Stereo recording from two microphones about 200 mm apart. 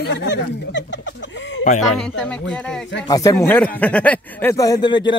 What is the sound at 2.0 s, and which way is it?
Speech, 5° left (ahead or behind).